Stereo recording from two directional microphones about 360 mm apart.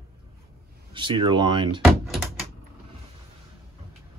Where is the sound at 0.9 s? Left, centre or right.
Centre.